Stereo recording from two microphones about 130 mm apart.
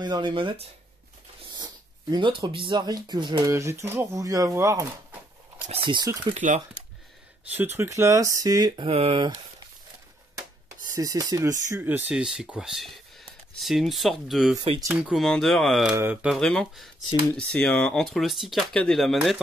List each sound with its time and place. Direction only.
0.0 s speech: 35° right (ahead or behind)
3.4 s speech: 20° right (ahead or behind)
5.7 s speech: 40° right (ahead or behind)
6.3 s speech: 70° right (ahead or behind)
7.5 s speech: 15° right (ahead or behind)
8.7 s speech: 45° right (ahead or behind)
9.2 s speech: 35° right (ahead or behind)
11.0 s speech: 30° right (ahead or behind)
11.7 s speech: 15° right (ahead or behind)
16.3 s speech: 5° left (ahead or behind)